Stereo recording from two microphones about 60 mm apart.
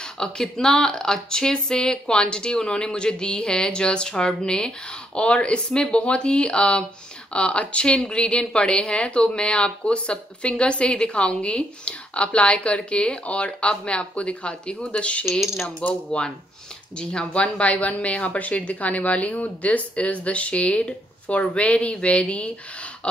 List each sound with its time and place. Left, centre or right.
0.0 s speech: centre